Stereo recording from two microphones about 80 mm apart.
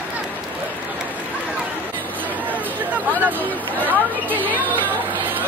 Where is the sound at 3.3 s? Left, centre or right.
Right.